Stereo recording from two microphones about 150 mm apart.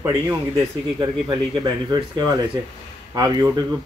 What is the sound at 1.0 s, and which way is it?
Speech, 30° right (ahead or behind).